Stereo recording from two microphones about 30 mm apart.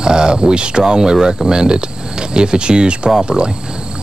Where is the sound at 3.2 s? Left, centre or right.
Right.